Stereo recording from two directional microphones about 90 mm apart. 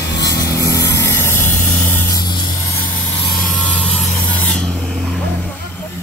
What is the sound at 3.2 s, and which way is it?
Vehicle, 5° left (ahead or behind).